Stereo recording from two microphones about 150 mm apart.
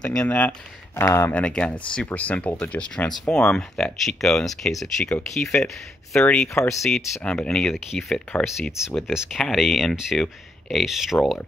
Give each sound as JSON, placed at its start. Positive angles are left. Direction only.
{"t": 0.0, "sound": "speech", "side_deg": 5}
{"t": 6.5, "sound": "speech", "side_deg": 20}
{"t": 7.2, "sound": "speech", "side_deg": 10}